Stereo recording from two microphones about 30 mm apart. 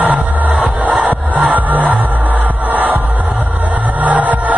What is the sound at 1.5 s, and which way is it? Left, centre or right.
Crowd, right.